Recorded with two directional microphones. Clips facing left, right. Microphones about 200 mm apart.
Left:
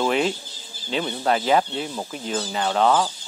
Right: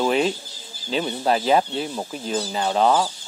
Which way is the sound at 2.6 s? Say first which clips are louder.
Even; 10° right (ahead or behind).